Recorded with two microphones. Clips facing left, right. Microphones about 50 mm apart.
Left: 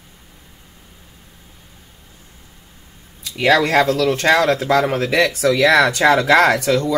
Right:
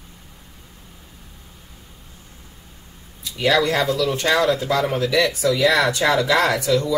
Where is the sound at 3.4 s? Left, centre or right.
Left.